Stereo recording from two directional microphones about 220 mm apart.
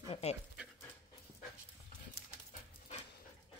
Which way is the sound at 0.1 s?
30° left (ahead or behind).